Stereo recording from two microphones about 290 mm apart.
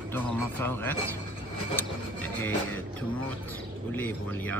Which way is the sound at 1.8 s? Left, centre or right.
Centre.